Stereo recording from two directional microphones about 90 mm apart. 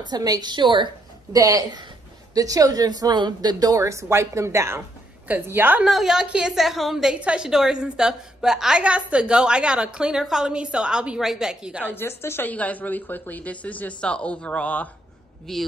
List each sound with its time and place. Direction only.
0.0 s a woman's voice: 45° right (ahead or behind)
1.3 s a woman's voice: 40° right (ahead or behind); by 5.9 s 20° right (ahead or behind)
5.9 s a woman's voice: 5° right (ahead or behind)
11.8 s a woman's voice: 25° left (ahead or behind)
15.5 s a woman's voice: 5° left (ahead or behind)